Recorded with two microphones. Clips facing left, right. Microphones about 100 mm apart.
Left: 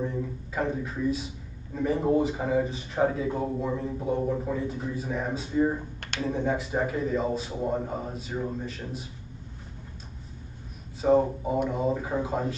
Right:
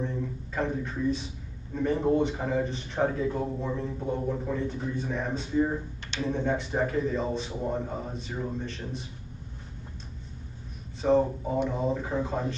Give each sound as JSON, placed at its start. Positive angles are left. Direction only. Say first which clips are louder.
{"t": 0.0, "sound": "a man's voice", "louder": "left 1 dB", "side_deg": 5}
{"t": 11.0, "sound": "a man's voice", "louder": "left 1 dB", "side_deg": 5}